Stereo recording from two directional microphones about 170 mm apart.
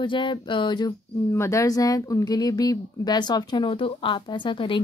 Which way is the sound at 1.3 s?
15° left (ahead or behind).